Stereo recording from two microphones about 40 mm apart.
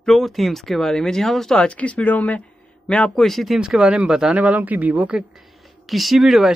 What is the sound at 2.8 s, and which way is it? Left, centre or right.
Speech, left.